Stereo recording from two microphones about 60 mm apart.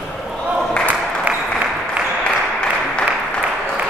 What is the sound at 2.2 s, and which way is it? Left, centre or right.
Applause, centre.